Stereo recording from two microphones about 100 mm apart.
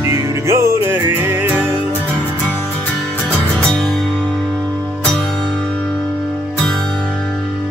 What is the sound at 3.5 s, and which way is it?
Music, 5° left (ahead or behind).